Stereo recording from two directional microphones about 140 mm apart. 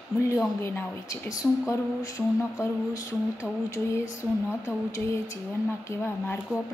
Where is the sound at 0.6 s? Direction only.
20° left (ahead or behind).